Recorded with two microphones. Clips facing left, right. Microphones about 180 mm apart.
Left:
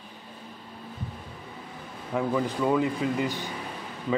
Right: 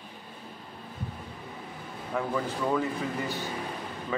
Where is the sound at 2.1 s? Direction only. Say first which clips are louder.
Left 4 dB; 15° left (ahead or behind).